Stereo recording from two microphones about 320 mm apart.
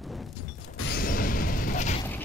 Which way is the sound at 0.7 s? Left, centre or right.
Left.